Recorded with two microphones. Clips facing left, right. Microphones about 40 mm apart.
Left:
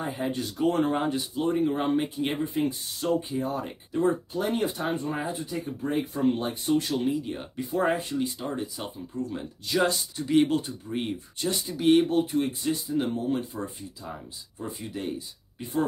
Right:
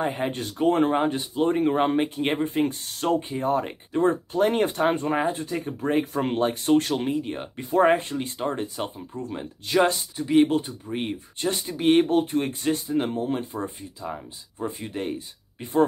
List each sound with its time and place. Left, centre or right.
0.0 s speech: right
6.8 s speech: right
10.1 s speech: right